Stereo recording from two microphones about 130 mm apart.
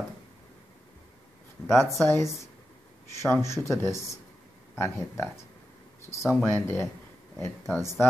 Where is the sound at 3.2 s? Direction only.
20° left (ahead or behind).